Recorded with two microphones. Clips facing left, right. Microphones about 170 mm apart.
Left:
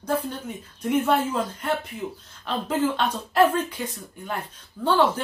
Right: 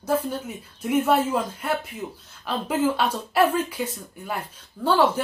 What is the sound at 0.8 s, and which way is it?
Speech, 5° right (ahead or behind).